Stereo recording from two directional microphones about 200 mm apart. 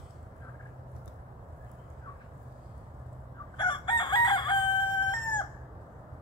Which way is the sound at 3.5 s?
20° left (ahead or behind).